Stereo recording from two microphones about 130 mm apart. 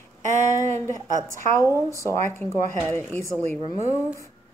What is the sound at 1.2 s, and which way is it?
Speech, 25° right (ahead or behind).